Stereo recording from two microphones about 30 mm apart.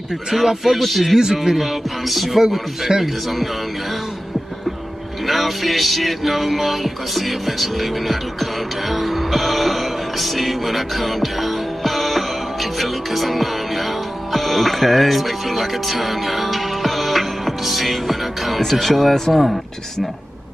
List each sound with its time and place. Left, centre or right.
0.3 s speech: centre
0.7 s music: centre
1.1 s speech: centre
1.6 s music: centre
2.9 s speech: right
5.2 s music: centre
18.6 s speech: centre